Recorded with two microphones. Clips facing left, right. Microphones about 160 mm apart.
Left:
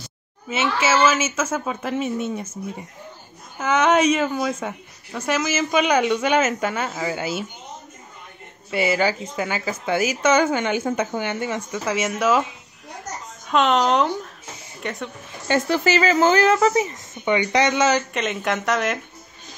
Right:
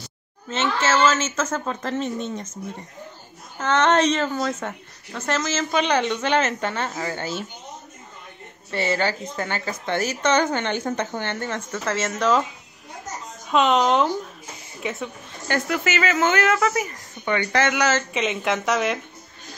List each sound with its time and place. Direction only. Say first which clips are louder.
0.5 s a woman's voice: left 1 dB; 10° left (ahead or behind)
8.6 s a woman's voice: left 3 dB; 10° left (ahead or behind)
13.5 s speech: even; centre (ahead or behind)
15.4 s speech: left 4 dB; 20° left (ahead or behind)
15.8 s speech: left 5 dB; 35° left (ahead or behind); by 18.0 s 20° left (ahead or behind)
18.1 s speech: even; centre (ahead or behind)